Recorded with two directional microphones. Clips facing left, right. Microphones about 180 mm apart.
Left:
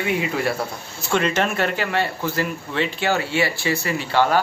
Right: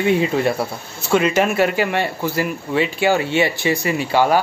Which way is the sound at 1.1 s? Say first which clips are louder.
Right 5 dB; 10° right (ahead or behind).